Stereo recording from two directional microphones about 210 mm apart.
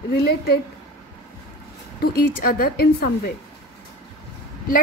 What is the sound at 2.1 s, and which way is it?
A woman's voice, 45° left (ahead or behind).